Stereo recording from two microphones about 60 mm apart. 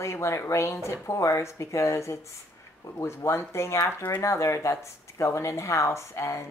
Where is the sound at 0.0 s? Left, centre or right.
Left.